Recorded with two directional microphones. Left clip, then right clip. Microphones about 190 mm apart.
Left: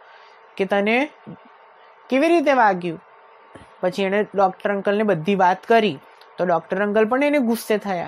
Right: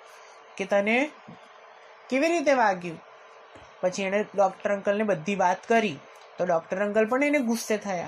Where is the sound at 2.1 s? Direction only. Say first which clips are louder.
Left 6 dB; 40° left (ahead or behind).